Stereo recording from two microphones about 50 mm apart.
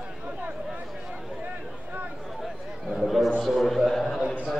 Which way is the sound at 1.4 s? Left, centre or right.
Right.